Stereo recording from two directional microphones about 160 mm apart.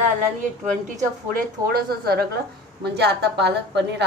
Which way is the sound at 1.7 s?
75° right (ahead or behind).